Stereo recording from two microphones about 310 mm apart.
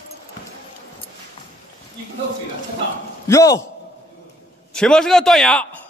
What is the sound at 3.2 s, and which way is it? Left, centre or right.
Speech, centre.